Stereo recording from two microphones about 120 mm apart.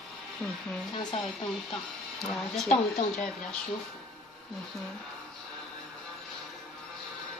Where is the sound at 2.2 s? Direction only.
5° left (ahead or behind).